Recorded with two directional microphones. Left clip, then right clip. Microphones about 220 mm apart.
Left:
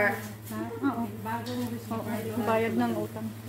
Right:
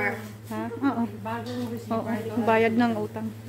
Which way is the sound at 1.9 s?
40° right (ahead or behind).